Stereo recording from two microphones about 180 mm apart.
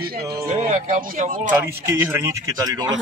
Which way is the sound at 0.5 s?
40° right (ahead or behind).